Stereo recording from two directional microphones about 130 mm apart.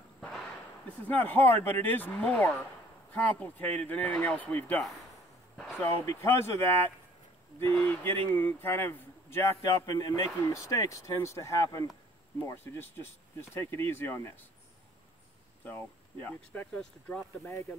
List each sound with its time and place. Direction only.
1.0 s speech: 15° left (ahead or behind)
6.0 s speech: 20° left (ahead or behind)
15.6 s speech: 15° left (ahead or behind)